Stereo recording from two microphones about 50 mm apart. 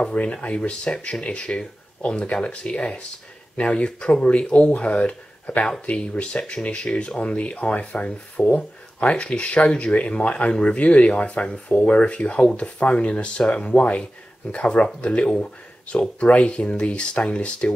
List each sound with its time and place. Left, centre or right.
0.2 s speech: left